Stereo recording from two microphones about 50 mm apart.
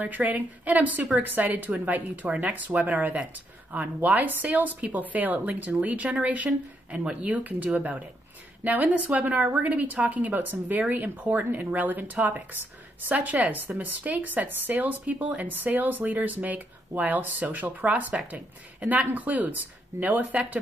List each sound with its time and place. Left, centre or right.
0.0 s speech: right